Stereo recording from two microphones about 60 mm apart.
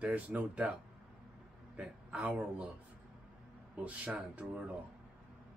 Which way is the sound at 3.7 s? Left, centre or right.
Right.